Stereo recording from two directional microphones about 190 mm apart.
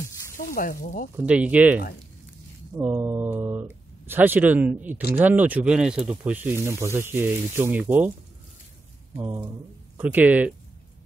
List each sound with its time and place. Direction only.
0.4 s speech: 45° left (ahead or behind)
1.1 s speech: 5° right (ahead or behind)
2.8 s speech: 10° right (ahead or behind)
9.1 s speech: 15° right (ahead or behind)